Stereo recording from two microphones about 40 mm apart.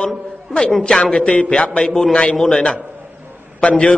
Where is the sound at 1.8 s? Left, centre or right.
Centre.